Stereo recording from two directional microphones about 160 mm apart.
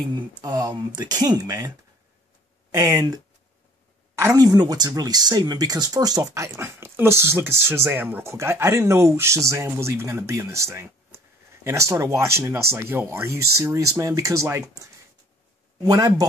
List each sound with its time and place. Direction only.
0.4 s speech: 20° right (ahead or behind)
2.7 s speech: 20° right (ahead or behind)